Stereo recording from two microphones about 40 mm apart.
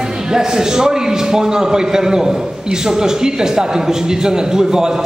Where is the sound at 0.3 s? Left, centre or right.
Centre.